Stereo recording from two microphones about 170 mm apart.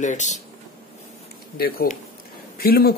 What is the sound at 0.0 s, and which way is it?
Speech, 45° left (ahead or behind).